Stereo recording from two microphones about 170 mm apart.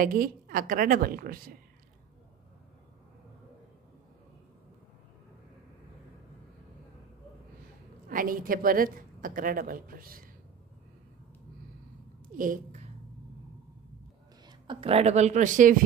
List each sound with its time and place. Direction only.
0.0 s a woman's voice: 55° right (ahead or behind)
8.1 s a woman's voice: 55° right (ahead or behind)
12.4 s speech: 50° right (ahead or behind)
14.7 s a woman's voice: 35° right (ahead or behind); by 15.8 s 50° right (ahead or behind)